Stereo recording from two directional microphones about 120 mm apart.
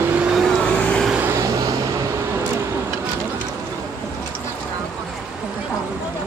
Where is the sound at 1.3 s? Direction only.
30° right (ahead or behind).